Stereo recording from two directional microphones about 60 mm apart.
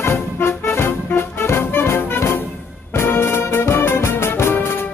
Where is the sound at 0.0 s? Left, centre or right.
Left.